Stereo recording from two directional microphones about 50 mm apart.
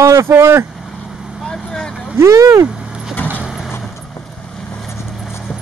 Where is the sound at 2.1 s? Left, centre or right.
Right.